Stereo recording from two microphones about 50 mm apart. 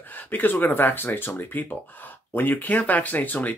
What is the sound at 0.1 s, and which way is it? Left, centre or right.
Speech, left.